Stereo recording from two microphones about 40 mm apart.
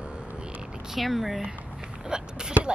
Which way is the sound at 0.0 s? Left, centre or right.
Right.